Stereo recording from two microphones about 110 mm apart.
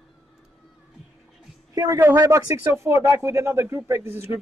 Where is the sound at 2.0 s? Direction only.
25° right (ahead or behind).